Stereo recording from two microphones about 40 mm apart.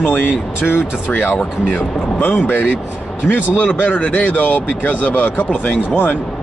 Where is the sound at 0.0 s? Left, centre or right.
Left.